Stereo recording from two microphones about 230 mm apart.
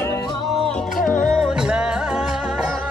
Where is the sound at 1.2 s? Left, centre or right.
Centre.